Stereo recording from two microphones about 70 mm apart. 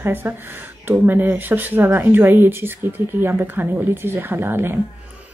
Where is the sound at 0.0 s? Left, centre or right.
Right.